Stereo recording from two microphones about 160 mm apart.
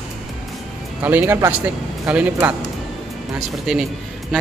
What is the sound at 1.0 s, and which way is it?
Speech, 10° right (ahead or behind).